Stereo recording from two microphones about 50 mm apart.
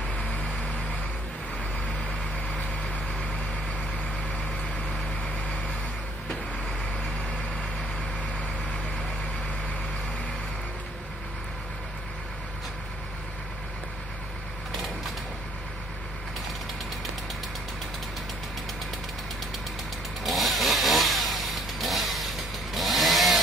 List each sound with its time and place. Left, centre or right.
0.1 s vehicle: left
5.2 s vehicle: left
20.2 s chainsaw: centre
22.8 s a sound: centre